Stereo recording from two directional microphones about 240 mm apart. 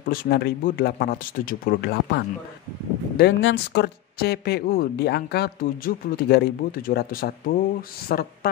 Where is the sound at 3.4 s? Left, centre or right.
Left.